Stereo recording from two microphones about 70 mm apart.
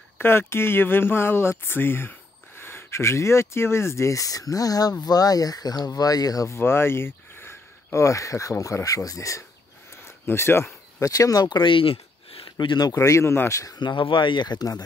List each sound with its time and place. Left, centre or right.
0.2 s speech: left
6.5 s speech: left
10.0 s speech: left
11.0 s speech: left
12.9 s speech: left
13.5 s speech: left
13.7 s speech: left